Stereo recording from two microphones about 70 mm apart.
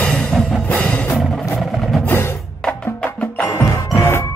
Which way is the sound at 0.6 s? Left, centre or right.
Centre.